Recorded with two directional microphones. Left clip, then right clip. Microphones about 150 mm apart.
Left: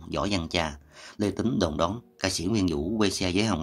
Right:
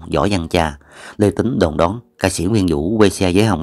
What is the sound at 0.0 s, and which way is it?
Speech, 40° right (ahead or behind).